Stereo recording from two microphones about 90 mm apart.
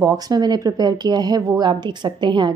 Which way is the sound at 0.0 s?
45° right (ahead or behind).